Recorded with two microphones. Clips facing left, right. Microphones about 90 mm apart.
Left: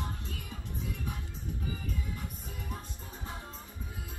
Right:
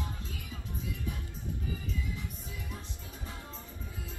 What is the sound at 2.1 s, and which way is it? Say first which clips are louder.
Music: even; 50° left (ahead or behind).